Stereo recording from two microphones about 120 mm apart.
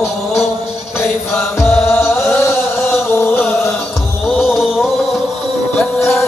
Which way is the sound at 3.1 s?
20° left (ahead or behind).